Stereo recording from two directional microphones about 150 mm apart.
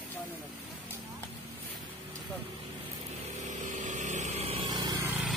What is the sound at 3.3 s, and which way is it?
Vehicle, 55° right (ahead or behind).